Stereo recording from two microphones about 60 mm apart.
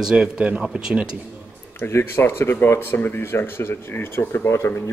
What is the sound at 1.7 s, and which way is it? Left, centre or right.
Speech, left.